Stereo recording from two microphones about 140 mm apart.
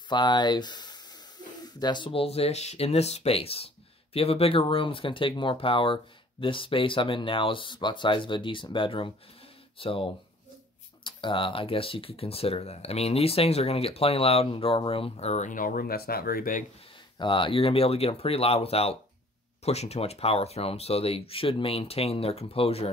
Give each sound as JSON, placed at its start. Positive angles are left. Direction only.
{"t": 0.1, "sound": "speech", "side_deg": 30}
{"t": 11.1, "sound": "speech", "side_deg": 35}
{"t": 17.2, "sound": "speech", "side_deg": 35}